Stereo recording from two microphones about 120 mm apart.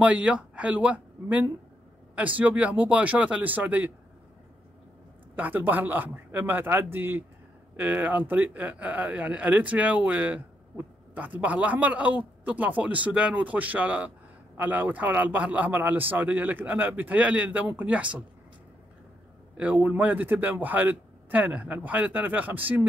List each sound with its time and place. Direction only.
0.0 s speech: 10° right (ahead or behind)
5.3 s speech: 15° right (ahead or behind)
19.5 s speech: 10° right (ahead or behind)